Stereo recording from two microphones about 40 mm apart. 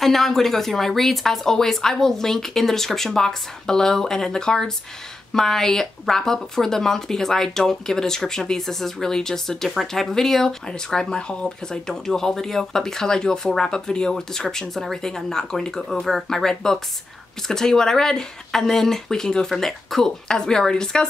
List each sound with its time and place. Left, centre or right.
0.0 s speech: centre
10.9 s speech: centre
20.2 s a woman's voice: centre